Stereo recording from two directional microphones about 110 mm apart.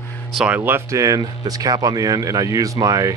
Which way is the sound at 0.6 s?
20° right (ahead or behind).